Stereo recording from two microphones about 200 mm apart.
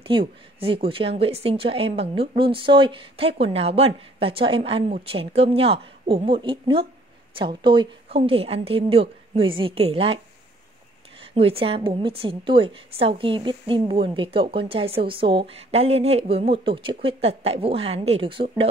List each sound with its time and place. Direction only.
0.0 s a woman's voice: 25° right (ahead or behind)
11.3 s a woman's voice: 30° right (ahead or behind)